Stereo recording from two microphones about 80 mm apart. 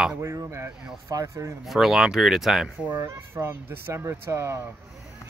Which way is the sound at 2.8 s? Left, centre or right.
Right.